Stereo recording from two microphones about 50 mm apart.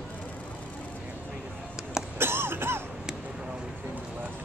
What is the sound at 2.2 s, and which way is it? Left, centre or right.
Music, right.